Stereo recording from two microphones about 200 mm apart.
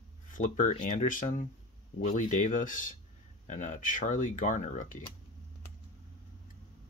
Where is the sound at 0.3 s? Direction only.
40° left (ahead or behind).